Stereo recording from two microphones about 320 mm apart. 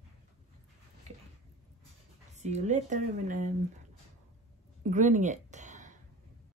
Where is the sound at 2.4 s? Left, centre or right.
Right.